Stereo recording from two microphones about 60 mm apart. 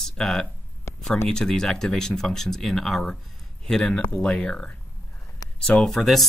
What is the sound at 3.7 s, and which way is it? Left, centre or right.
Speech, centre.